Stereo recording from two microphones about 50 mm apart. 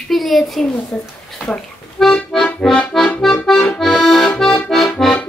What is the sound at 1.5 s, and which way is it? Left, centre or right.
Accordion, centre.